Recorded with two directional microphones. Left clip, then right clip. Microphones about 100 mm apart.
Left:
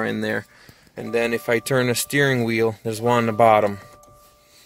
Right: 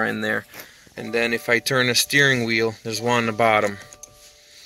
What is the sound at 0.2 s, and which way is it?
Speech, 45° left (ahead or behind).